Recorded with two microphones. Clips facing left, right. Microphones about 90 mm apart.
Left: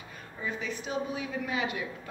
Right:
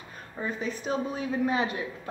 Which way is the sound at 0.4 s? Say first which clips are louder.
Right 3 dB; 40° right (ahead or behind).